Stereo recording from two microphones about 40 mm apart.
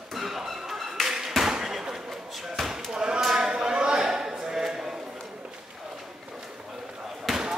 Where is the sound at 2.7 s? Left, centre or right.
Centre.